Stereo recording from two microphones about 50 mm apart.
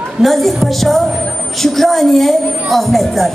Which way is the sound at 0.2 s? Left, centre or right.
Centre.